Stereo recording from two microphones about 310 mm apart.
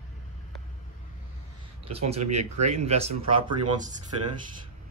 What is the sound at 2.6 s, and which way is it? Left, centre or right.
Speech, right.